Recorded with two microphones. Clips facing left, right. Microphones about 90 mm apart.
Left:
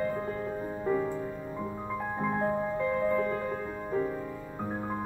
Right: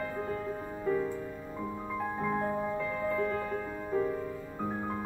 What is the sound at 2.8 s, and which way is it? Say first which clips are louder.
Music: left 4 dB; 10° left (ahead or behind).